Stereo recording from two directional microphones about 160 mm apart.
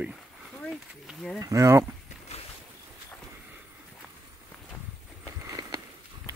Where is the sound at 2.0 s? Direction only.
45° left (ahead or behind).